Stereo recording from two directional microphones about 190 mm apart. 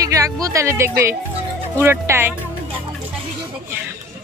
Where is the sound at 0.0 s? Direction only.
15° right (ahead or behind).